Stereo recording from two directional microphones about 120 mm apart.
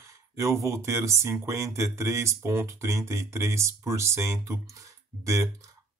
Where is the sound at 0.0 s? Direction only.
25° right (ahead or behind).